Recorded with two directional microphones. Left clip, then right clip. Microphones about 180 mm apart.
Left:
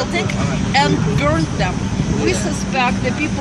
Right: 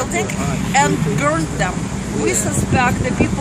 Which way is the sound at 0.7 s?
5° right (ahead or behind).